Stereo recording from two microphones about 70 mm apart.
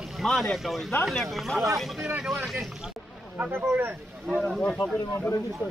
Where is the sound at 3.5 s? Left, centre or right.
Right.